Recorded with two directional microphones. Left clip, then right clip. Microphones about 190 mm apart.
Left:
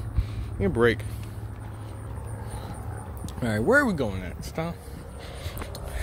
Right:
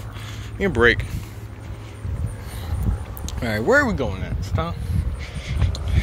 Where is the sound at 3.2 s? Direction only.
15° left (ahead or behind).